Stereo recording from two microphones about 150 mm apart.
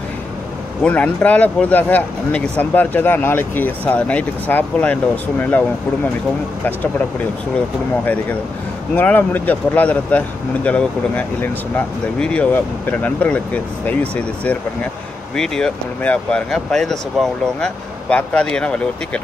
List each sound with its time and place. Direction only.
0.8 s speech: 10° left (ahead or behind)
6.6 s speech: 10° left (ahead or behind)